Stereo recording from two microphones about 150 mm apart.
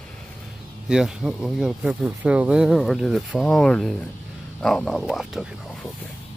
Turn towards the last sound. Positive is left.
turn(degrees=0)  # may be behind; listen again after turning